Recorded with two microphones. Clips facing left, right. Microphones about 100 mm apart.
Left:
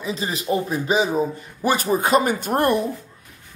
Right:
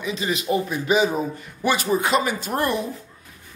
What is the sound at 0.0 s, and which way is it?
A man's voice, 35° left (ahead or behind).